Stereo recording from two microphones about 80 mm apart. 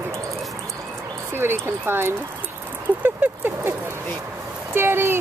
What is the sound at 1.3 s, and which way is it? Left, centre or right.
Speech, right.